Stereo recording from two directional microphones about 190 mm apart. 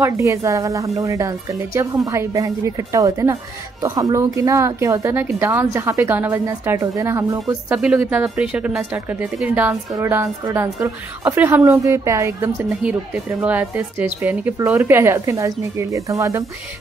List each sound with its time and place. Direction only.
0.0 s a woman's voice: 15° right (ahead or behind)
7.7 s a woman's voice: 5° right (ahead or behind)